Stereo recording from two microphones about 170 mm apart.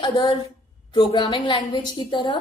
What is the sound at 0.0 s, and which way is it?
A woman's voice, 30° left (ahead or behind).